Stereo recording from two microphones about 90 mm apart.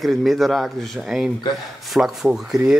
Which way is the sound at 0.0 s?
Centre (ahead or behind).